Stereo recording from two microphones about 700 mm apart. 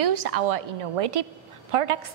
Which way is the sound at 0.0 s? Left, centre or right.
Right.